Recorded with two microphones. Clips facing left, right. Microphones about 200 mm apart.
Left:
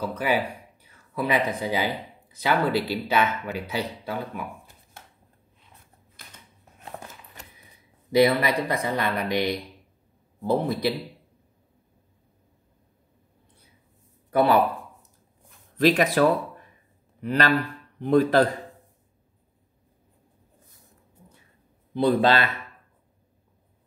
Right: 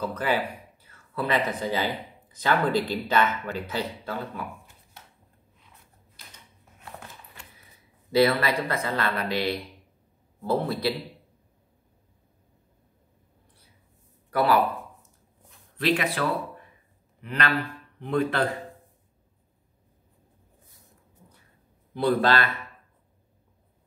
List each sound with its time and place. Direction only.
0.0 s speech: 10° left (ahead or behind)
5.0 s a sound: 50° left (ahead or behind)
8.1 s speech: 15° left (ahead or behind)
14.3 s speech: 20° left (ahead or behind)
15.8 s a man's voice: 40° left (ahead or behind)
21.9 s speech: 20° left (ahead or behind)